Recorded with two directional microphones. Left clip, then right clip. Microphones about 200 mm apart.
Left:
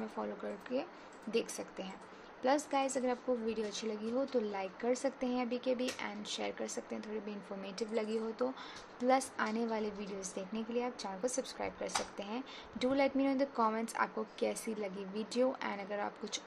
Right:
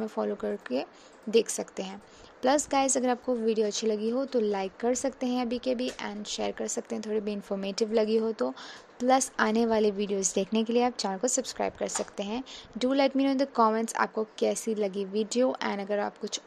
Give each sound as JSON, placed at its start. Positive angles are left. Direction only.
{"t": 0.0, "sound": "a woman's voice", "side_deg": -35}